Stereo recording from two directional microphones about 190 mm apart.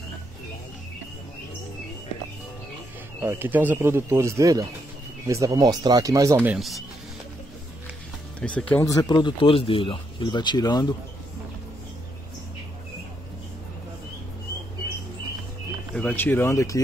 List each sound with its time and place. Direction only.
3.2 s speech: 15° right (ahead or behind)
8.4 s speech: 5° left (ahead or behind)
15.9 s speech: 5° left (ahead or behind)